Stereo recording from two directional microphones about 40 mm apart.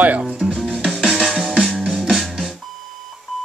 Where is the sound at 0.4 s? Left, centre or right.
Centre.